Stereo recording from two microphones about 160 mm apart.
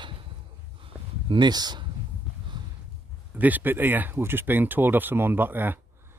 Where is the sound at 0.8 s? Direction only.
30° right (ahead or behind).